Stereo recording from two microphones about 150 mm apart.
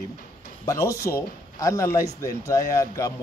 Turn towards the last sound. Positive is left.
turn(degrees=20)  # may be behind; listen again after turning